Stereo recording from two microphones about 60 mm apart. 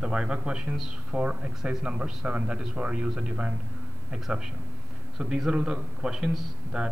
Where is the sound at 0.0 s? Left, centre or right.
Centre.